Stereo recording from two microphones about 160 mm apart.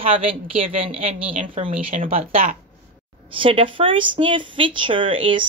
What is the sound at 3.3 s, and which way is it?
Speech, 35° right (ahead or behind).